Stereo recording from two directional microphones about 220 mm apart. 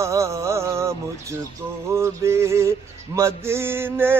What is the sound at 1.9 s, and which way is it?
Music, 10° right (ahead or behind).